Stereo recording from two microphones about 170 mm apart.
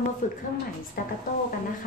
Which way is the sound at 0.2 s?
50° left (ahead or behind).